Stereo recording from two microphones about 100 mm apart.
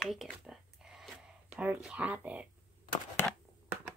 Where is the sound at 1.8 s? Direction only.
10° right (ahead or behind).